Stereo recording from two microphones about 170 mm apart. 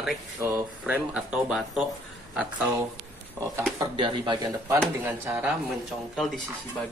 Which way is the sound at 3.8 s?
30° right (ahead or behind).